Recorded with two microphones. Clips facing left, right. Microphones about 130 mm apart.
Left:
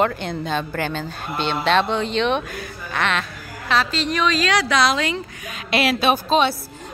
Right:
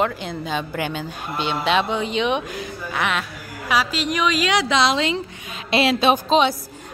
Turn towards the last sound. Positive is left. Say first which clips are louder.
# right 1 dB
turn(degrees=-20)  # may be behind; listen again after turning